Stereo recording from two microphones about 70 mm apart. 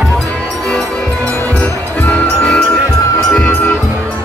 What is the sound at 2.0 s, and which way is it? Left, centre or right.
Music, centre.